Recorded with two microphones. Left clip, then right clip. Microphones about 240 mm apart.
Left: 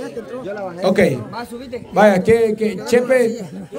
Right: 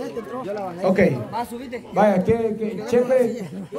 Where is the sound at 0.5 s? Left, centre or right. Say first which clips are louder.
Left 4 dB; centre.